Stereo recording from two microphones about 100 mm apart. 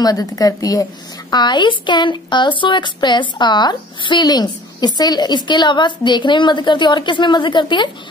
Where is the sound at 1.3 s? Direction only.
50° left (ahead or behind).